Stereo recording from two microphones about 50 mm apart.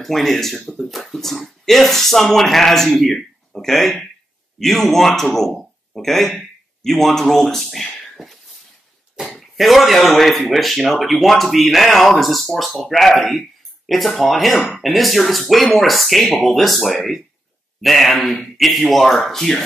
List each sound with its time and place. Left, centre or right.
0.0 s speech: centre
9.4 s speech: centre